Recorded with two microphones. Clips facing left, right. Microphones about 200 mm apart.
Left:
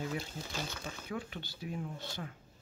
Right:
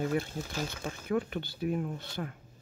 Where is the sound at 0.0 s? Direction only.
55° right (ahead or behind).